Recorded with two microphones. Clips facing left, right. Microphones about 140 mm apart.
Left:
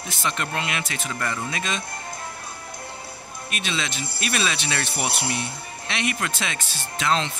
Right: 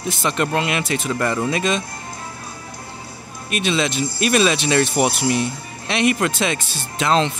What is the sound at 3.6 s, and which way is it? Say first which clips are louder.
Speech: right 10 dB; 20° right (ahead or behind).